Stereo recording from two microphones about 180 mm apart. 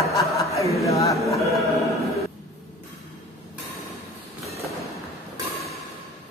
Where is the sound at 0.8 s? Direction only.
15° left (ahead or behind).